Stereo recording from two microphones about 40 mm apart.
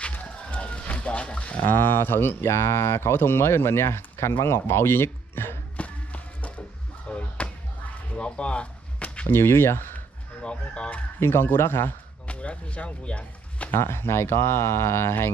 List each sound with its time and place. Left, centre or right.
0.0 s run: left
1.7 s speech: left
5.8 s music: left
7.1 s a sound: left
9.3 s speech: left
10.4 s speech: left
11.1 s a man's voice: left
12.3 s speech: left
13.7 s speech: left